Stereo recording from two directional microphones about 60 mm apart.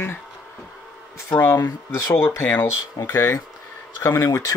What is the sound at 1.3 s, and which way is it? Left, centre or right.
Speech, left.